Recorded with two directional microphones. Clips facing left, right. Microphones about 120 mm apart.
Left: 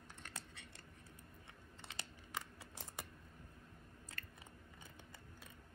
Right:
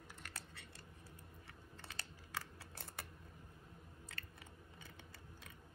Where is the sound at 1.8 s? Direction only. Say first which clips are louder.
Left 1 dB; 20° left (ahead or behind).